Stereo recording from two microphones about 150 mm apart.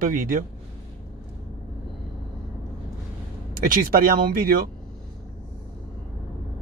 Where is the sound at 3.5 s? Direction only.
70° right (ahead or behind).